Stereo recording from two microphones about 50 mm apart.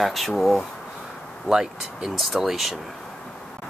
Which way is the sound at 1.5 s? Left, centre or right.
Centre.